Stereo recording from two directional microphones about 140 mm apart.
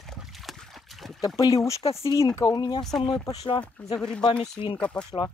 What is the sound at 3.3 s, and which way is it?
Speech, 35° left (ahead or behind).